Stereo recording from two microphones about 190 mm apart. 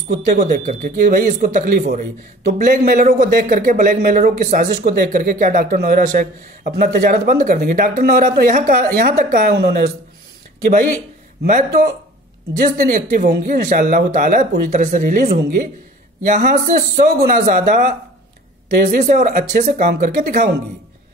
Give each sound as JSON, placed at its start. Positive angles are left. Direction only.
{"t": 0.1, "sound": "a man's voice", "side_deg": -40}
{"t": 11.4, "sound": "a man's voice", "side_deg": -45}